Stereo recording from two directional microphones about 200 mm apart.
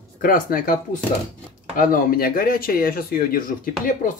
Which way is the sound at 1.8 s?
45° left (ahead or behind).